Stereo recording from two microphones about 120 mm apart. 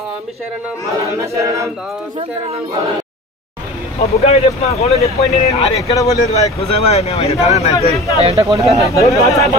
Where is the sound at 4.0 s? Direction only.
60° left (ahead or behind).